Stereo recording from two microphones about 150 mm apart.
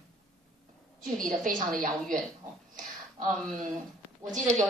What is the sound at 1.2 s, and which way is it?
Speech, 60° right (ahead or behind).